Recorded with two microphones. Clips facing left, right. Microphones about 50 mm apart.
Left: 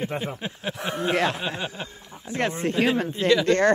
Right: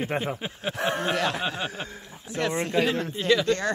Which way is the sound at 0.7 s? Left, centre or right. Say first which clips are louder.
Right 6 dB; right.